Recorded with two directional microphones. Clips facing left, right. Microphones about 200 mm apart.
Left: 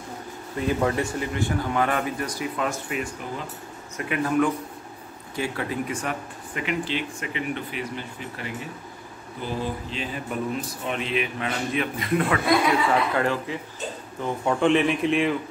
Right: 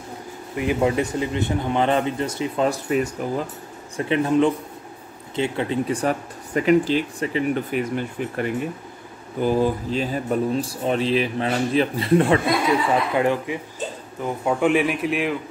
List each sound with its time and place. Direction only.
0.6 s a man's voice: 15° right (ahead or behind)
12.9 s speech: 15° right (ahead or behind)